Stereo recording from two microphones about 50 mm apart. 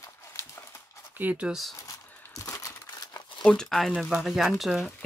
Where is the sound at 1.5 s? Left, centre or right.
Centre.